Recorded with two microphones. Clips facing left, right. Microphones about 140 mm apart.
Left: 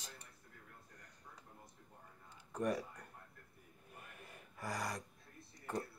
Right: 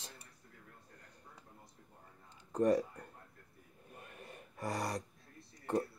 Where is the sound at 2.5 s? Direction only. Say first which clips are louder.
Right 8 dB; 30° right (ahead or behind).